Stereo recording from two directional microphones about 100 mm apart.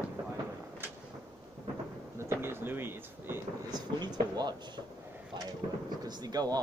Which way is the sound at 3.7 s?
45° right (ahead or behind).